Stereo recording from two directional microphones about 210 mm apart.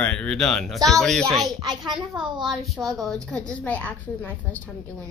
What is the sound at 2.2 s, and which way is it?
Speech, 20° right (ahead or behind).